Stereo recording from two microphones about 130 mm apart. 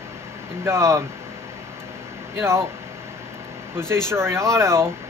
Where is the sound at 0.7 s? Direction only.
20° right (ahead or behind).